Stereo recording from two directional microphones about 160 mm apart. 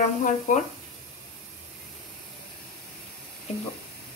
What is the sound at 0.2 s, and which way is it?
Speech, 50° left (ahead or behind).